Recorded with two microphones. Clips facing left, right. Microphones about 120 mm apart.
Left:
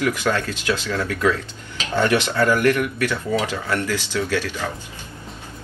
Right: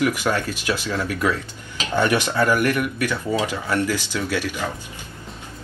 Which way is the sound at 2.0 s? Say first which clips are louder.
Left 1 dB; 15° right (ahead or behind).